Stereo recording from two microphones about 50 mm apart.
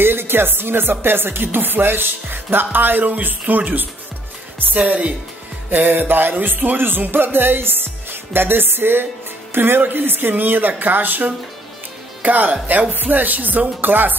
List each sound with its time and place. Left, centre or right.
0.0 s music: right
4.7 s a woman's voice: right
5.7 s speech: right